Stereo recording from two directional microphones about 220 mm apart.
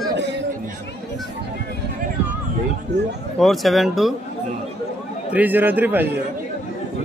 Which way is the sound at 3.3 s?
Centre (ahead or behind).